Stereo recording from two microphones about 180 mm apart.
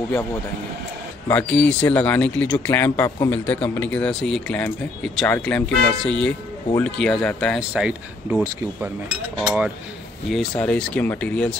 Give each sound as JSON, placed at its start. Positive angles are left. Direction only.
{"t": 1.3, "sound": "a man's voice", "side_deg": 5}